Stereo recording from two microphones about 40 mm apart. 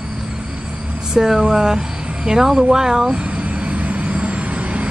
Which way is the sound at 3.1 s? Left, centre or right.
Right.